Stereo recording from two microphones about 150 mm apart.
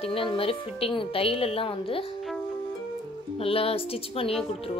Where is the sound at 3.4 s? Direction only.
40° left (ahead or behind).